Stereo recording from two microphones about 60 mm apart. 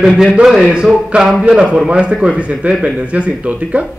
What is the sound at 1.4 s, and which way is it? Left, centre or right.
Speech, centre.